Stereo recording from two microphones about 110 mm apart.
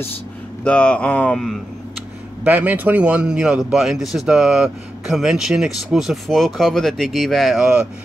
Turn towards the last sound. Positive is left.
turn(degrees=-5)  # may be behind; listen again after turning